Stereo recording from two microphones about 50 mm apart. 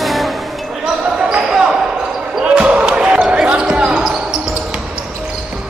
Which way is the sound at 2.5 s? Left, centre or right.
Centre.